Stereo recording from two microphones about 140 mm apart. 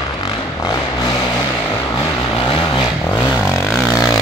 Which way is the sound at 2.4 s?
35° left (ahead or behind).